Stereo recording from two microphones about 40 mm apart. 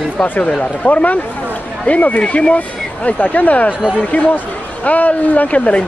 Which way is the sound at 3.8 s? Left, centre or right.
Centre.